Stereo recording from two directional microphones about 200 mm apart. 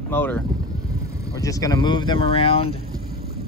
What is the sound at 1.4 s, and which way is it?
Speech, 20° left (ahead or behind).